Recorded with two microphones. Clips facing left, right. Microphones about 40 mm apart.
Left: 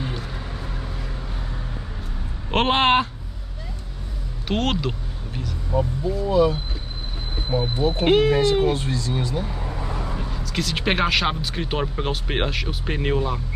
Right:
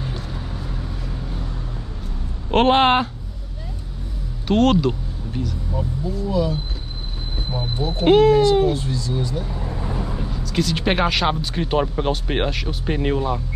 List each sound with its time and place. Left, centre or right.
2.5 s speech: centre
4.5 s speech: centre
5.7 s speech: left
8.0 s speech: centre
8.6 s speech: left
8.9 s speech: left
9.9 s vehicle: centre
10.4 s speech: centre